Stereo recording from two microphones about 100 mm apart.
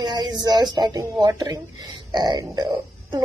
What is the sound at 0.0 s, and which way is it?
Speech, 45° right (ahead or behind).